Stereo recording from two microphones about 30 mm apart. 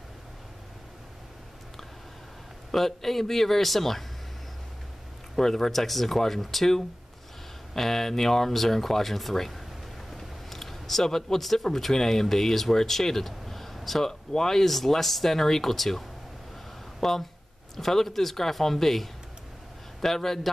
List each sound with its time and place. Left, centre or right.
2.7 s speech: centre
5.3 s speech: centre
7.7 s speech: centre
10.1 s a sound: centre
11.1 s speech: centre